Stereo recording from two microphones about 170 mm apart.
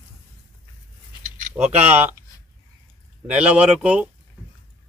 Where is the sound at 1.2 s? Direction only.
50° right (ahead or behind).